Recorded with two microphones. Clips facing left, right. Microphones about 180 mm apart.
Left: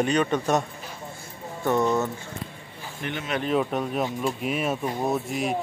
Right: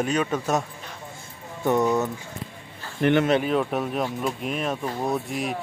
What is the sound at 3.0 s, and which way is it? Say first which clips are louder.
Speech: right 13 dB; 60° right (ahead or behind).